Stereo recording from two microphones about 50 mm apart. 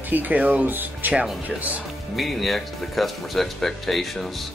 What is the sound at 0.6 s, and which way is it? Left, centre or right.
Speech, right.